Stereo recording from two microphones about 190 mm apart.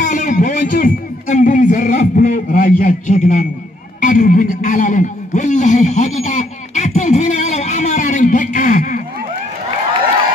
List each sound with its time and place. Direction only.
0.0 s a man's voice: 40° left (ahead or behind)